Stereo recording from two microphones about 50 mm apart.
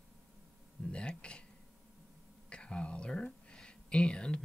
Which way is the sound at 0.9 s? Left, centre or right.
Left.